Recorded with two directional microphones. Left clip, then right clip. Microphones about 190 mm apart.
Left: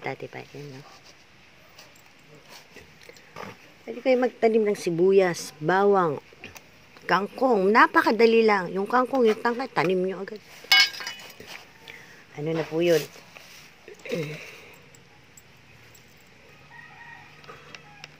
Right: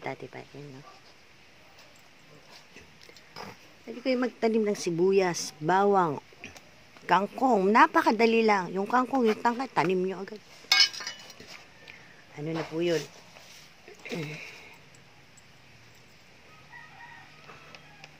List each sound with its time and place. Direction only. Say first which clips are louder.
0.0 s speech: left 4 dB; 5° left (ahead or behind)
3.8 s speech: left 7 dB; 5° right (ahead or behind)
6.4 s pig: left 2 dB; 15° right (ahead or behind)
7.1 s speech: left 2 dB; 5° right (ahead or behind)
10.7 s chink: left 4 dB; 35° left (ahead or behind)
11.9 s a sound: left 5 dB; 10° left (ahead or behind)
14.0 s speech: left 5 dB; centre (ahead or behind)